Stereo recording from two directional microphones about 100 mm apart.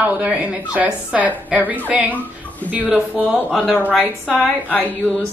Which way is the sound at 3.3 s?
Centre (ahead or behind).